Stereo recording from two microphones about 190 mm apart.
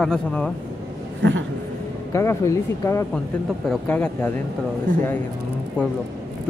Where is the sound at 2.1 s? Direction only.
15° left (ahead or behind).